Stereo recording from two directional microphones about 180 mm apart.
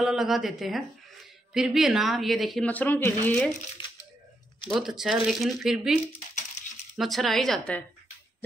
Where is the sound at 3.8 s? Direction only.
25° left (ahead or behind).